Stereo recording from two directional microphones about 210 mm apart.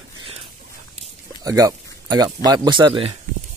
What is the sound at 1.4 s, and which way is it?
Speech, 15° right (ahead or behind).